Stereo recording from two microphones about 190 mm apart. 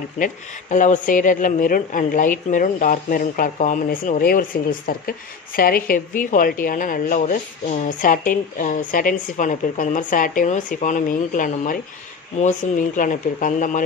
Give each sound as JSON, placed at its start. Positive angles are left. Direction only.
{"t": 0.2, "sound": "speech", "side_deg": 40}